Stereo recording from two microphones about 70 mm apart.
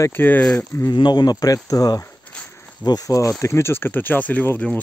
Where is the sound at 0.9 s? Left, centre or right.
Left.